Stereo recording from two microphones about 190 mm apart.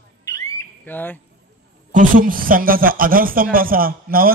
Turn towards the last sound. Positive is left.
turn(degrees=-50)  # may be behind; listen again after turning